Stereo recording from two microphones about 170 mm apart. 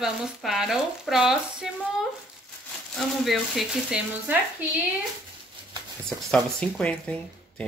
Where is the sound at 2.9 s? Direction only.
Centre (ahead or behind).